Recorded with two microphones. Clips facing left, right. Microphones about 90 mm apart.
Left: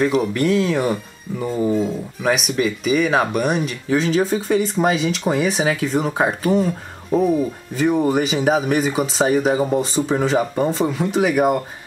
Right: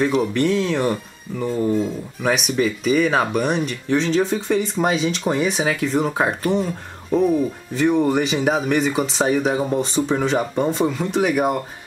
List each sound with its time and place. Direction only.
0.0 s speech: centre (ahead or behind)